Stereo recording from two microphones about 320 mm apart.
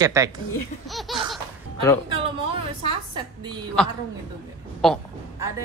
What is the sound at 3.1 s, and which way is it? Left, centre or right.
Speech, centre.